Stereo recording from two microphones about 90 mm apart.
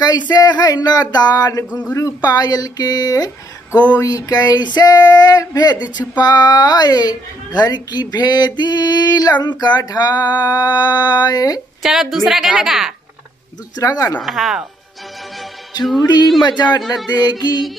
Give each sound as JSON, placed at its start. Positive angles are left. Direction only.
{"t": 0.0, "sound": "female singing", "side_deg": 50}
{"t": 11.8, "sound": "a woman's voice", "side_deg": -5}
{"t": 13.7, "sound": "speech", "side_deg": 40}
{"t": 14.2, "sound": "a woman's voice", "side_deg": 0}
{"t": 15.8, "sound": "a woman's voice", "side_deg": 0}
{"t": 16.4, "sound": "female singing", "side_deg": 50}